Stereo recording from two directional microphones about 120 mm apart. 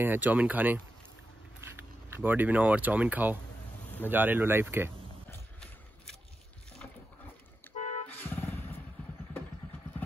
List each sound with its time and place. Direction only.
0.0 s speech: 15° right (ahead or behind)
7.7 s vehicle: 70° left (ahead or behind)
8.2 s vehicle: 15° left (ahead or behind)